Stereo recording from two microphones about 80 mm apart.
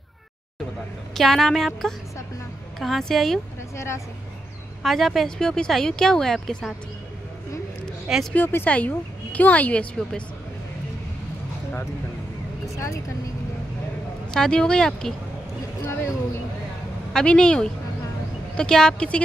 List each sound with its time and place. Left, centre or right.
1.1 s speech: centre
3.7 s speech: left
4.8 s speech: centre
8.3 s a woman's voice: left
14.3 s speech: centre
15.9 s speech: left
17.1 s speech: centre